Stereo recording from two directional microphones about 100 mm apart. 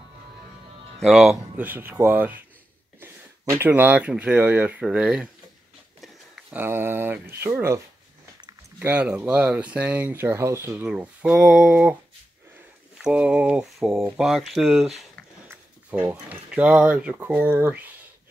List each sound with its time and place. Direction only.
0.9 s speech: centre (ahead or behind)
1.6 s speech: 20° right (ahead or behind)
6.5 s speech: 20° right (ahead or behind)
8.7 s speech: 15° right (ahead or behind)
10.9 s speech: 10° right (ahead or behind)
13.0 s speech: 10° right (ahead or behind)
13.7 s speech: centre (ahead or behind)
15.4 s speech: 20° right (ahead or behind)